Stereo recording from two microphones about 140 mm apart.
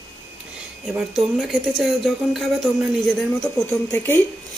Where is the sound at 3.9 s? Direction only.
15° left (ahead or behind).